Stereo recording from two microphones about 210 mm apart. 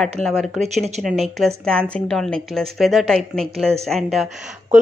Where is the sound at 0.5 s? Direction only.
30° right (ahead or behind).